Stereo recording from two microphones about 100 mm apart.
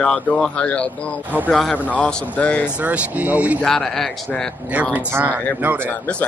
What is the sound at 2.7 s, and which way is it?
Speech, 15° right (ahead or behind).